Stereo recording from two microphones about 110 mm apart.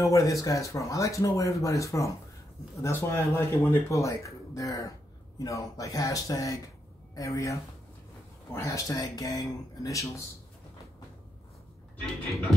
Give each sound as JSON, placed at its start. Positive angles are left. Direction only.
{"t": 0.0, "sound": "speech", "side_deg": 30}
{"t": 8.5, "sound": "speech", "side_deg": 30}